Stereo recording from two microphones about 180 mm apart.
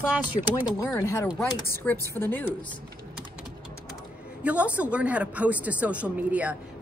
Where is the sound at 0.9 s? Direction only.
15° left (ahead or behind).